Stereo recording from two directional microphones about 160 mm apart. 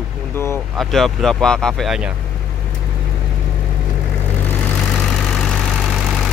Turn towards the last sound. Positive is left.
turn(degrees=0)  # may be behind; listen again after turning